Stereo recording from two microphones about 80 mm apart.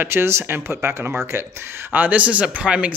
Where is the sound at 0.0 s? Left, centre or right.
Right.